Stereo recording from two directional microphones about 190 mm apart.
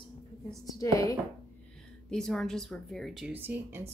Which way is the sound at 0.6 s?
20° left (ahead or behind).